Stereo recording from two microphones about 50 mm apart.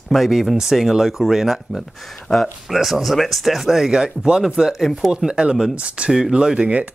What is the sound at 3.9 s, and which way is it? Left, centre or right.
Speech, centre.